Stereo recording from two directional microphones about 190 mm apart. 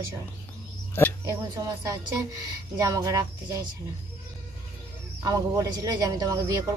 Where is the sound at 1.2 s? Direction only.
15° right (ahead or behind).